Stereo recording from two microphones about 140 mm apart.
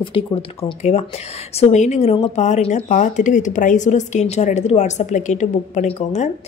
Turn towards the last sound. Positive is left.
turn(degrees=55)  # may be behind; listen again after turning